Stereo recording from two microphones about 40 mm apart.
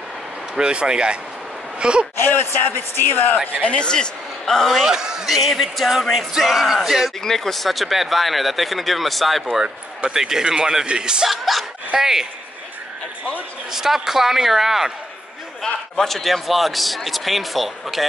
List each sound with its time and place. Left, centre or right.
0.6 s speech: right
2.1 s speech: left
3.6 s speech: left
4.5 s speech: centre
4.8 s a man's voice: centre
5.2 s speech: centre
7.2 s speech: centre
10.1 s a man's voice: centre
11.2 s speech: centre
12.0 s a man's voice: centre
13.7 s a man's voice: centre
15.6 s speech: centre